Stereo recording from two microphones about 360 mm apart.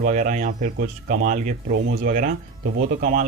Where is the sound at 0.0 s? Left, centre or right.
Right.